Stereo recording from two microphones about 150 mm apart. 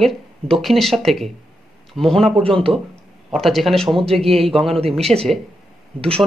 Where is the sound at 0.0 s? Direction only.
Centre (ahead or behind).